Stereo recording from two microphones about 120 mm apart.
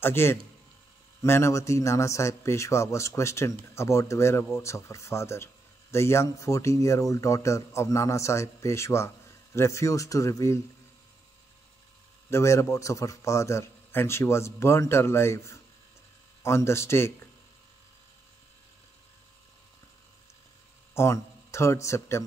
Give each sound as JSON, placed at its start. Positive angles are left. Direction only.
{"t": 0.0, "sound": "a man's voice", "side_deg": 20}
{"t": 12.3, "sound": "a man's voice", "side_deg": 25}
{"t": 20.9, "sound": "a man's voice", "side_deg": 20}